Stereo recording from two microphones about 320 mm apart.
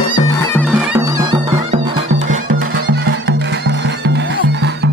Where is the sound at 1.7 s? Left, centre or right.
Right.